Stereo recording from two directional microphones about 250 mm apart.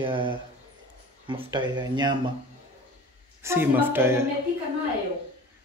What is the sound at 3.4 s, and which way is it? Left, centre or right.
Speech, centre.